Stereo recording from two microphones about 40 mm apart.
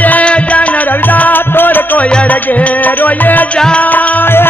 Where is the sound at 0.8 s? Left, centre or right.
Left.